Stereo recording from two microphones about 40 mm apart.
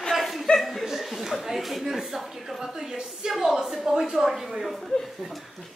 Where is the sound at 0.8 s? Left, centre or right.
Centre.